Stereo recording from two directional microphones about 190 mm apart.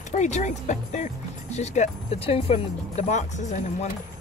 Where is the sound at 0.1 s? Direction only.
40° left (ahead or behind).